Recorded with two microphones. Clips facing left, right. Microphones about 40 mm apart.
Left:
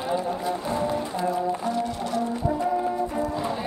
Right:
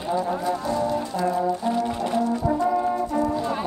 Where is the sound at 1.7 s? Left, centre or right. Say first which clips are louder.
Right 3 dB; right.